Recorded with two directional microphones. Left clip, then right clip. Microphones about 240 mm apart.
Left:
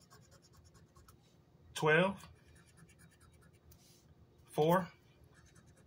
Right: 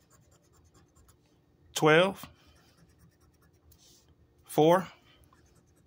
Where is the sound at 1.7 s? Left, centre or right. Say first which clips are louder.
Right 8 dB; right.